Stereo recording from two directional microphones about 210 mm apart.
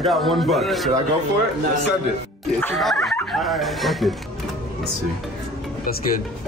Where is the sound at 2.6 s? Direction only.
5° left (ahead or behind).